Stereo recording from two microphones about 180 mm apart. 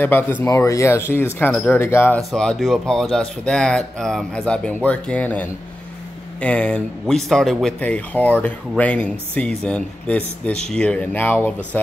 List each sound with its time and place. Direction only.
0.0 s speech: 10° left (ahead or behind)